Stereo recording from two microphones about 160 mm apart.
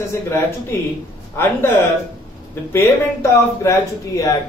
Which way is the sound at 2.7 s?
15° left (ahead or behind).